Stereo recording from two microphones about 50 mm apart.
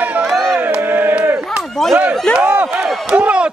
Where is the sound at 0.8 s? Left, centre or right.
Right.